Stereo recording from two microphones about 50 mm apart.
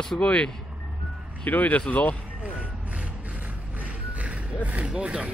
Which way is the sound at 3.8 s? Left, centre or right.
Right.